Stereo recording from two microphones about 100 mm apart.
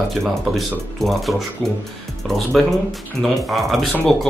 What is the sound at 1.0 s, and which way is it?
Speech, centre (ahead or behind).